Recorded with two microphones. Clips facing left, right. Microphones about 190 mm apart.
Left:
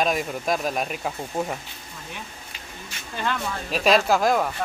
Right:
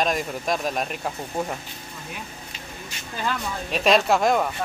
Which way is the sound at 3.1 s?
5° right (ahead or behind).